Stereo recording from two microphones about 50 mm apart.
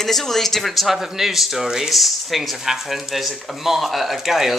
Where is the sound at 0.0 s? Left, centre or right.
Centre.